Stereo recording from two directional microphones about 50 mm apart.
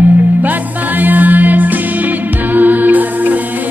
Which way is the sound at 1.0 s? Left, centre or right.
Right.